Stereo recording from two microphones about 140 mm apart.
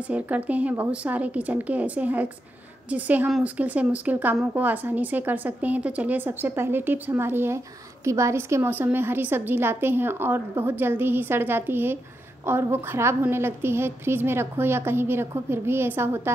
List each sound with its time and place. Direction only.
0.1 s speech: 10° right (ahead or behind)